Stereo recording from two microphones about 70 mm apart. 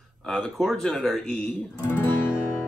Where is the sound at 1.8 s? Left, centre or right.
Left.